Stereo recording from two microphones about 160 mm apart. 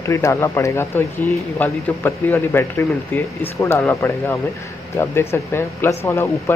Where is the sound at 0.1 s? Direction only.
20° left (ahead or behind).